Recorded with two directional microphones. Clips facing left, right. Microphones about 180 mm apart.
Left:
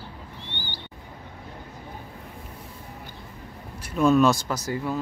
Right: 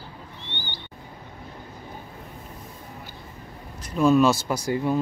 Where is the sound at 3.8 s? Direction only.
5° left (ahead or behind); by 5.0 s 20° right (ahead or behind).